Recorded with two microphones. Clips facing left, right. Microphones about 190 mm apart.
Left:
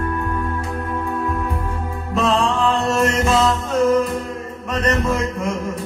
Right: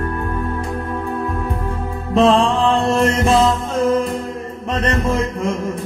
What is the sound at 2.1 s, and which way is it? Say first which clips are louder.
Music: right 5 dB; 30° right (ahead or behind).